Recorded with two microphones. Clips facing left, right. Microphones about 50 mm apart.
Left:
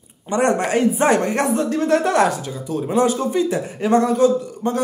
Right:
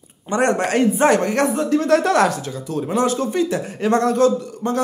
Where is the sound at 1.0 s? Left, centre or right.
Left.